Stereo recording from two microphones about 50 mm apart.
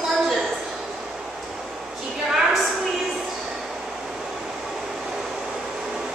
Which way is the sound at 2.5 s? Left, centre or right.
Centre.